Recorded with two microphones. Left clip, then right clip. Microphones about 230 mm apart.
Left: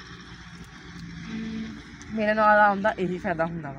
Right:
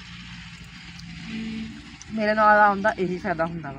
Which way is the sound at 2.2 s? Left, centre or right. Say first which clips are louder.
Right 2 dB; centre.